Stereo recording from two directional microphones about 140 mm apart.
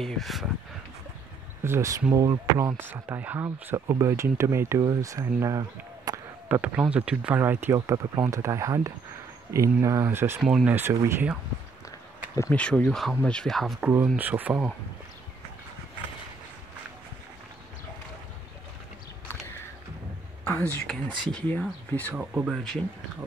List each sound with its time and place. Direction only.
0.0 s speech: centre (ahead or behind)
1.6 s speech: 20° right (ahead or behind)
6.5 s speech: 10° right (ahead or behind)
10.4 s speech: 5° right (ahead or behind)
12.5 s speech: 10° left (ahead or behind)
14.0 s speech: 10° right (ahead or behind)
20.4 s a woman's voice: 10° left (ahead or behind)
20.9 s speech: centre (ahead or behind)
22.1 s speech: 5° right (ahead or behind)